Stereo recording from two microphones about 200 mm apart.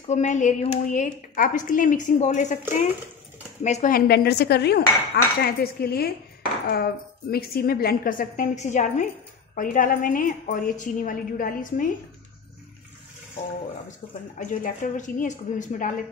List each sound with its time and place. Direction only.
0.1 s a woman's voice: 35° left (ahead or behind)
3.6 s cutlery: 40° left (ahead or behind)
9.6 s a woman's voice: 40° left (ahead or behind)
14.0 s speech: 25° left (ahead or behind)
14.4 s a woman's voice: 40° left (ahead or behind)